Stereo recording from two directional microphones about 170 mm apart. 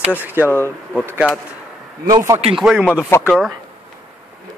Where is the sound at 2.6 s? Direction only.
5° right (ahead or behind).